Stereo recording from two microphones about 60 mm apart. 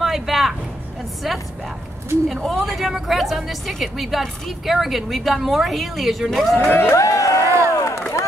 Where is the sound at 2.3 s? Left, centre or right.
Centre.